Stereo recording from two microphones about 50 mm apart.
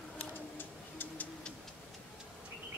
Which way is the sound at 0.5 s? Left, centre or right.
Left.